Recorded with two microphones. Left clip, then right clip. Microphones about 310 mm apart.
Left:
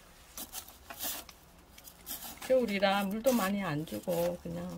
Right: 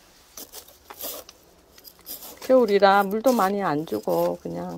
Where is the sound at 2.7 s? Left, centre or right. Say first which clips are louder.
Right 13 dB; centre.